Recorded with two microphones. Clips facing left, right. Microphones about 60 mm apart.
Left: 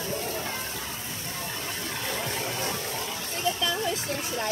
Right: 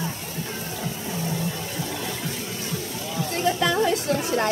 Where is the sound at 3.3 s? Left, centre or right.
Right.